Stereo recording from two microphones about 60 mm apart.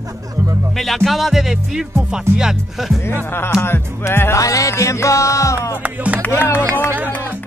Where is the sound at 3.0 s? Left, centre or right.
Left.